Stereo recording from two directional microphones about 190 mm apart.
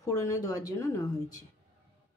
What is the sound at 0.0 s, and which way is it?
Speech, 15° left (ahead or behind).